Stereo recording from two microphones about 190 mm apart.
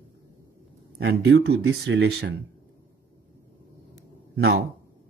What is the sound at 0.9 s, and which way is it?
Speech, 90° right.